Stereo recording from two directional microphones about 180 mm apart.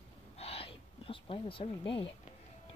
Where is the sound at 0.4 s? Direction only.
35° left (ahead or behind).